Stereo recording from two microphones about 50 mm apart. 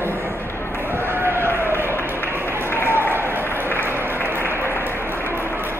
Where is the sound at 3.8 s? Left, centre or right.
Right.